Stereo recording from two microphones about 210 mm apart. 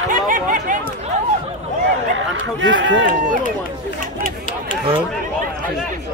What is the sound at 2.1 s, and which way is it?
Run, 60° right (ahead or behind).